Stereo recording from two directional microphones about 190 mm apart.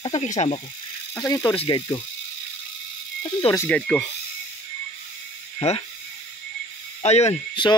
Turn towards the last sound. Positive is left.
turn(degrees=30)  # may be behind; listen again after turning